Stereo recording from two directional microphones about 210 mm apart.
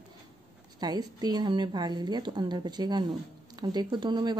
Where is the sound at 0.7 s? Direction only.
20° right (ahead or behind).